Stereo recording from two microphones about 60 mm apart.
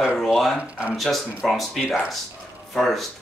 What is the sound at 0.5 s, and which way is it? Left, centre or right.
Speech, right.